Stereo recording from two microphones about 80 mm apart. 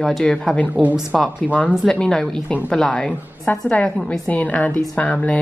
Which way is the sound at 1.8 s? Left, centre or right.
Centre.